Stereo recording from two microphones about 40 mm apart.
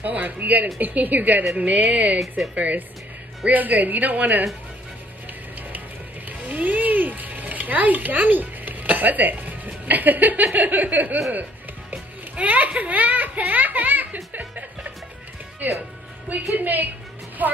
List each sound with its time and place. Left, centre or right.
0.0 s a woman's voice: right
1.5 s a woman's voice: right
6.2 s a child's voice: right
15.6 s a woman's voice: right